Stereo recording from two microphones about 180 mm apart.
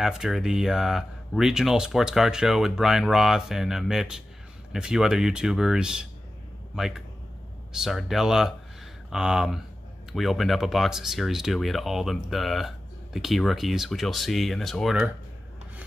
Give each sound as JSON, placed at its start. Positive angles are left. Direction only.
{"t": 0.0, "sound": "a man's voice", "side_deg": 0}